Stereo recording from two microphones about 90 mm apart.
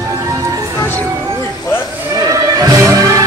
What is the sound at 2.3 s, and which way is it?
Music, 45° right (ahead or behind).